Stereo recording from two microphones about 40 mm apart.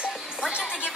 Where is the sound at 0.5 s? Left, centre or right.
Right.